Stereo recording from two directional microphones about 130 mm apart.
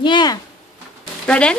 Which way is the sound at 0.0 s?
35° left (ahead or behind).